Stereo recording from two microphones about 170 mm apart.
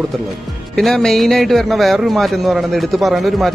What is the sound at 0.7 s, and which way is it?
A man's voice, centre (ahead or behind).